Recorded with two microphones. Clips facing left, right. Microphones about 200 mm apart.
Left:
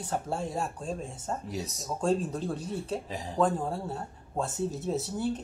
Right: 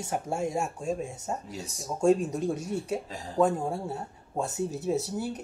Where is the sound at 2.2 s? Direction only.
70° right (ahead or behind).